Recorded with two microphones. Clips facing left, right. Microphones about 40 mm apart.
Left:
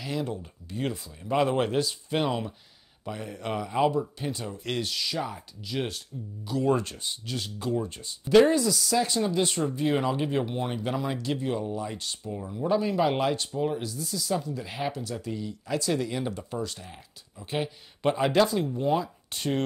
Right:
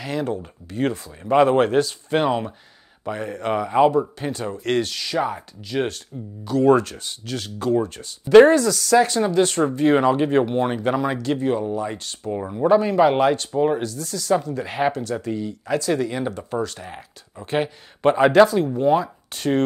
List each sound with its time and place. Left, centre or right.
0.0 s speech: right
2.2 s speech: right
4.0 s speech: right
5.2 s speech: right
8.6 s speech: right
9.3 s speech: right
13.6 s speech: right
13.8 s speech: right
14.6 s speech: right
14.9 s speech: right
16.1 s speech: right
16.3 s speech: right